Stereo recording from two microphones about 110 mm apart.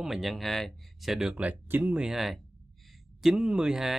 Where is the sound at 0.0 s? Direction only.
Centre (ahead or behind).